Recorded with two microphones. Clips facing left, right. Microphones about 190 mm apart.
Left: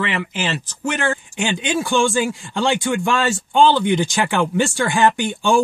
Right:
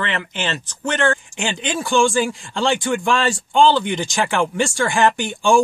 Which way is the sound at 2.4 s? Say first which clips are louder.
Even; 15° left (ahead or behind).